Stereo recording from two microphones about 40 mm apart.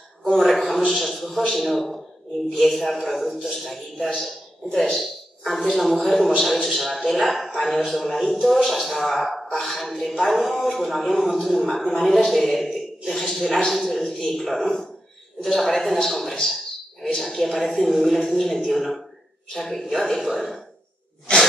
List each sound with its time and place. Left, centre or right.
0.2 s a sound: centre
0.8 s a man's voice: centre
4.6 s a woman's voice: centre
4.9 s a man's voice: centre
13.2 s a sound: centre
13.7 s a woman's voice: centre